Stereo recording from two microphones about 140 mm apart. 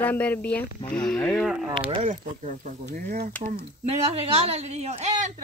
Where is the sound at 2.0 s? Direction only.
60° right (ahead or behind); by 3.3 s 80° right.